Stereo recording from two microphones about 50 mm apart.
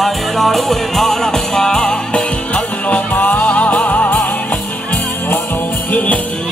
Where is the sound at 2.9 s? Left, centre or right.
Left.